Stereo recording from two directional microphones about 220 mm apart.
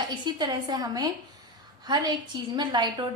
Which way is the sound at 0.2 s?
20° right (ahead or behind).